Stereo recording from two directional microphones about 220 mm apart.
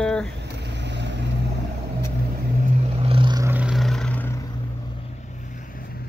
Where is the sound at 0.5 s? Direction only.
50° right (ahead or behind).